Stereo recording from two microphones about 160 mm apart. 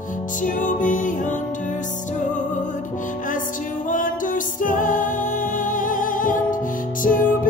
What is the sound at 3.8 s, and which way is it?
Music, 55° left (ahead or behind).